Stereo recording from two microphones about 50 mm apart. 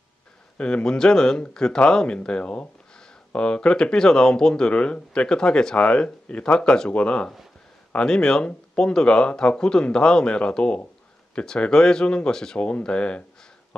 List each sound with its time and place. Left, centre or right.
0.6 s speech: left